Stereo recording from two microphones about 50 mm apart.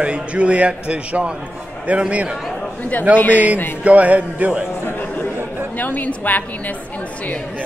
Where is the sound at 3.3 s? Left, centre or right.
Right.